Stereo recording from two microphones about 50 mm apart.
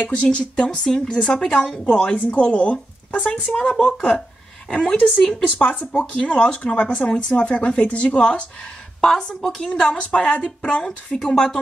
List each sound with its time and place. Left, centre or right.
0.2 s speech: left
9.0 s speech: centre
9.6 s speech: centre